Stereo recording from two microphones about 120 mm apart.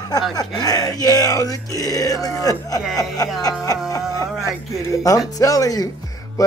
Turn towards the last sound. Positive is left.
turn(degrees=30)  # may be behind; listen again after turning